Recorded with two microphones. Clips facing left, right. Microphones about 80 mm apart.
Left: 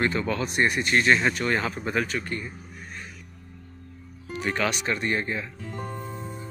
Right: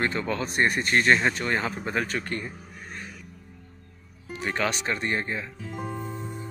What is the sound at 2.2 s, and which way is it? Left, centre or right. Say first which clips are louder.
Speech: right 1 dB; right.